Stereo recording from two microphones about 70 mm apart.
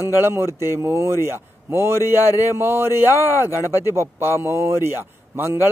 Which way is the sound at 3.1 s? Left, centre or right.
Left.